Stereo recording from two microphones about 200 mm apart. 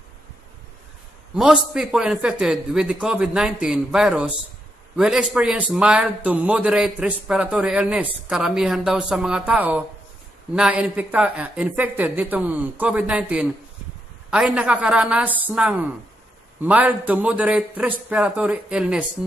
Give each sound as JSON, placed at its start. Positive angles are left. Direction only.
{"t": 1.3, "sound": "a man's voice", "side_deg": -5}